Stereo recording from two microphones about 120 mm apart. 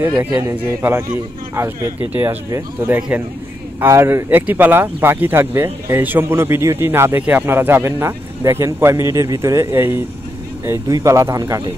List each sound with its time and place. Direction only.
0.3 s a man's voice: 25° right (ahead or behind)